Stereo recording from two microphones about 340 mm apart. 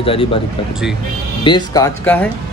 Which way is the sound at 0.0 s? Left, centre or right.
Centre.